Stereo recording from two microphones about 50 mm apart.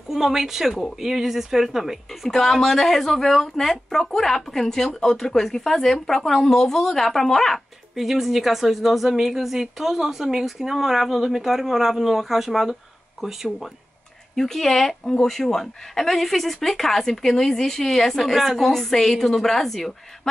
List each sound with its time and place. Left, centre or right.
0.1 s speech: centre
2.0 s a woman's voice: centre
7.9 s a woman's voice: centre
14.3 s a woman's voice: centre